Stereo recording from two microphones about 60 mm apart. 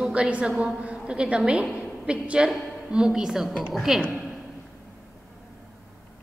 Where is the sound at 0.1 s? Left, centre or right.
Centre.